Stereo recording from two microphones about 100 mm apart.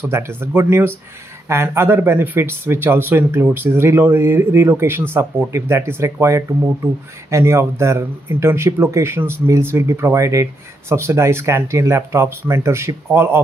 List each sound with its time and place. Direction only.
0.0 s speech: 25° right (ahead or behind)